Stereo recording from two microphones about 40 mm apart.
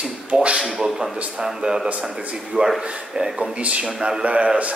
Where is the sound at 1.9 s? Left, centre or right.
Right.